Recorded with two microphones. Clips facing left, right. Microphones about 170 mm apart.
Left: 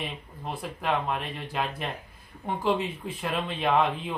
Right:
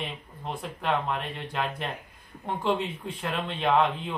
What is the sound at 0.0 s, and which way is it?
Speech, 5° left (ahead or behind).